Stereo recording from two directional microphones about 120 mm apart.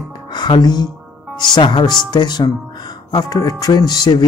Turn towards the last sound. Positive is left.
turn(degrees=35)  # may be behind; listen again after turning